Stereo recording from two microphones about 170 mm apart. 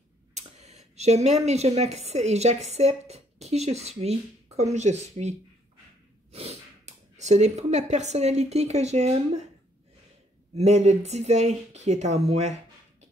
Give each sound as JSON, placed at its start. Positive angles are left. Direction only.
{"t": 0.3, "sound": "speech", "side_deg": -40}
{"t": 6.3, "sound": "speech", "side_deg": -35}
{"t": 10.5, "sound": "speech", "side_deg": -40}